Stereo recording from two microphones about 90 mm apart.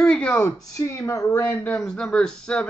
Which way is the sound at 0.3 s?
35° left (ahead or behind).